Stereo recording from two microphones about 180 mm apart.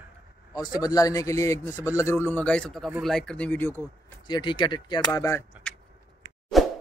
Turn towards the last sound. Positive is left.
turn(degrees=0)  # may be behind; listen again after turning